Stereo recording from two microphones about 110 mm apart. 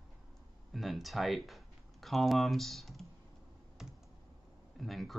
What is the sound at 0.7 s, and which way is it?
Speech, centre (ahead or behind).